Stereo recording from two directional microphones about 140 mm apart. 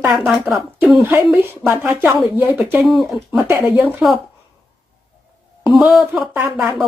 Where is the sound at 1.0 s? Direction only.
15° right (ahead or behind).